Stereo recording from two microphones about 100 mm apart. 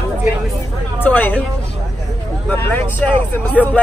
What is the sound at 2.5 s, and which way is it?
A man's voice, 20° left (ahead or behind).